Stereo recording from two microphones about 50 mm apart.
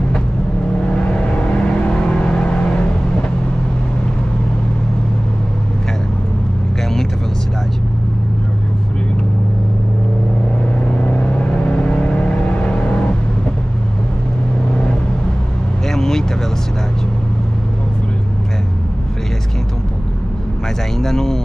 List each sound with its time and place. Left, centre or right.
0.8 s vehicle: centre
11.0 s vehicle: left
15.9 s vehicle: centre
21.0 s a sound: centre